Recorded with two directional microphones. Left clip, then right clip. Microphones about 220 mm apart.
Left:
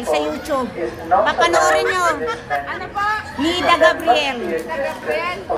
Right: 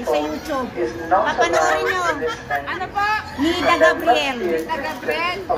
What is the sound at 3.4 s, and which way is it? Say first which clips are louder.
Speech: left 2 dB; 10° left (ahead or behind).